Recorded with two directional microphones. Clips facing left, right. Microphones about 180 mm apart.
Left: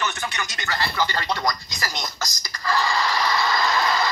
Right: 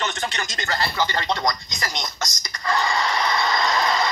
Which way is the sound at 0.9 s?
20° right (ahead or behind).